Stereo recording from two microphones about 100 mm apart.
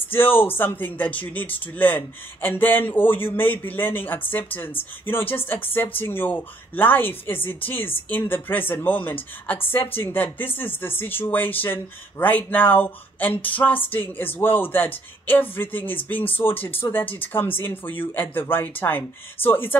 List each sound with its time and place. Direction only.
0.0 s speech: 20° left (ahead or behind)